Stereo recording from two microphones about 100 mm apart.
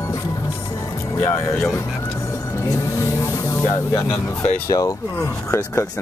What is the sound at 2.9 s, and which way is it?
Music, 30° left (ahead or behind).